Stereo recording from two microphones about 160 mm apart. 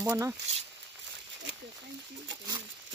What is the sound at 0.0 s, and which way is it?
Speech, 15° right (ahead or behind).